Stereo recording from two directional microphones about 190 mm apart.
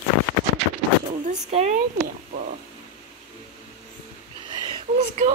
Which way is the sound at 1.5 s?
35° right (ahead or behind).